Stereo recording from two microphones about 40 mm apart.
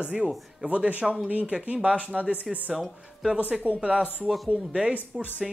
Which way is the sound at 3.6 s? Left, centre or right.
Right.